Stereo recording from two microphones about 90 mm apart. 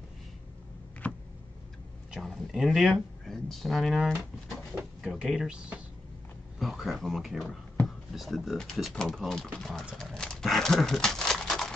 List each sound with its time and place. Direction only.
1.0 s a sound: 15° left (ahead or behind)
2.0 s speech: centre (ahead or behind)
6.6 s speech: centre (ahead or behind)